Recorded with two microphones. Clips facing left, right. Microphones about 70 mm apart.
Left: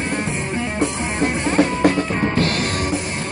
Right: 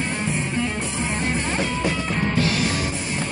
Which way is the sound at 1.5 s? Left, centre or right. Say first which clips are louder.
Left 7 dB; left.